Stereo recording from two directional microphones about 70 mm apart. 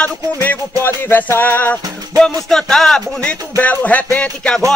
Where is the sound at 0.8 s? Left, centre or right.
Left.